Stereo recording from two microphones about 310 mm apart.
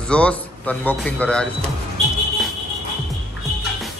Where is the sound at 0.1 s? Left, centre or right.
Centre.